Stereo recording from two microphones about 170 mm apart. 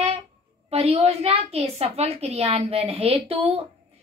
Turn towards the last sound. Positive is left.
turn(degrees=-35)  # may be behind; listen again after turning